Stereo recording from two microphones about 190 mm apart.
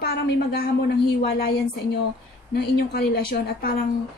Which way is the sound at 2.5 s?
55° left (ahead or behind).